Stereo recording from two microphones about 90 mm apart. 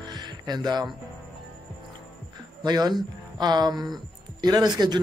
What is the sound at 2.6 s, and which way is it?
A man's voice, 50° right (ahead or behind).